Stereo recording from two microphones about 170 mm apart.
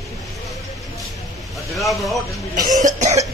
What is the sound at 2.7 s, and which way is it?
Cough, 45° right (ahead or behind).